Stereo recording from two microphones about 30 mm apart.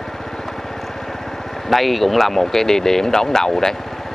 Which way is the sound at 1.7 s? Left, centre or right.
Centre.